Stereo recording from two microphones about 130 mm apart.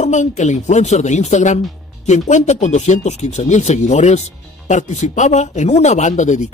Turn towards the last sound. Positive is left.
turn(degrees=65)  # may be behind; listen again after turning